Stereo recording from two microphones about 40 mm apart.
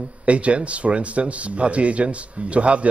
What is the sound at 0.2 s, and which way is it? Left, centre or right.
Speech, right.